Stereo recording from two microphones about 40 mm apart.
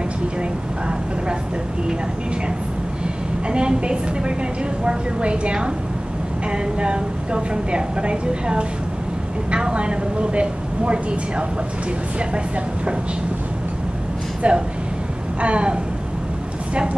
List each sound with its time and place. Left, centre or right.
3.4 s a woman's voice: right
14.4 s a woman's voice: right